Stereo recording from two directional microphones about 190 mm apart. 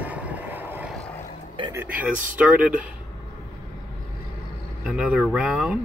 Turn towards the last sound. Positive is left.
turn(degrees=-5)  # may be behind; listen again after turning